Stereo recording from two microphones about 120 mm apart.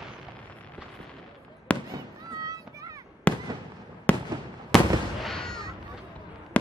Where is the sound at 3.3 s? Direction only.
10° left (ahead or behind).